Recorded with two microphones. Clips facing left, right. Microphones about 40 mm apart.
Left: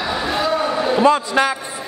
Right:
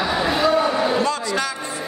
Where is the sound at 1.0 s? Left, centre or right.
Left.